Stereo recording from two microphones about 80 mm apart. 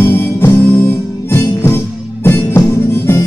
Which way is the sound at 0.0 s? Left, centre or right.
Left.